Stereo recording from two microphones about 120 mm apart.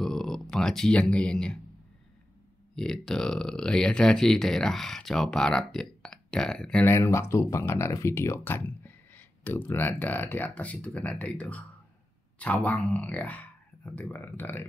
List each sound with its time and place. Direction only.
0.0 s a sound: 5° left (ahead or behind)
2.7 s speech: 5° left (ahead or behind)
6.9 s speech: 20° left (ahead or behind)